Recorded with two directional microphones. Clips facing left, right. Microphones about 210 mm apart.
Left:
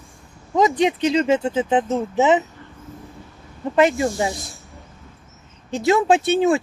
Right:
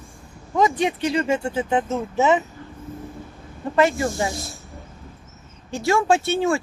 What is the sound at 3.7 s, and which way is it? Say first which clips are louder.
Speech: left 2 dB; 20° left (ahead or behind).